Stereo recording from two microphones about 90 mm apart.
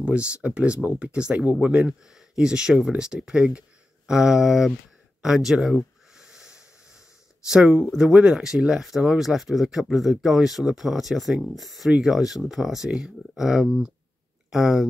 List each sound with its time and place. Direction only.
0.0 s speech: 10° right (ahead or behind)
5.2 s a sound: 5° right (ahead or behind)
7.4 s speech: 10° right (ahead or behind)